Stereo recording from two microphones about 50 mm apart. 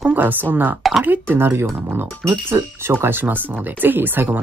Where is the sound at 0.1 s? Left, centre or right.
Right.